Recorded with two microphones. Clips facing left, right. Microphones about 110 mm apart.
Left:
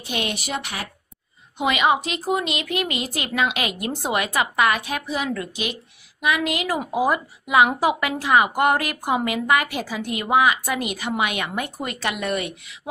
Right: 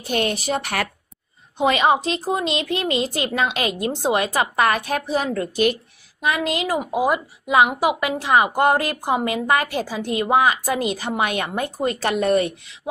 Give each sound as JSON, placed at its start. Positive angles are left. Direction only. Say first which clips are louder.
{"t": 0.0, "sound": "a woman's voice", "louder": "right 5 dB", "side_deg": -40}
{"t": 6.2, "sound": "a woman's voice", "louder": "right 1 dB", "side_deg": -30}